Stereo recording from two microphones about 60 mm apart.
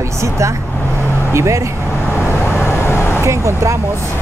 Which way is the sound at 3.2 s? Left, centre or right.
Right.